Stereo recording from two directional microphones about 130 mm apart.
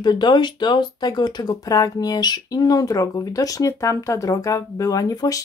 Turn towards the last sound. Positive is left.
turn(degrees=25)  # may be behind; listen again after turning